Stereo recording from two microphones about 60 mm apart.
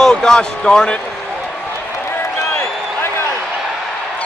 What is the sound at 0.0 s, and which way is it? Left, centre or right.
Speech, centre.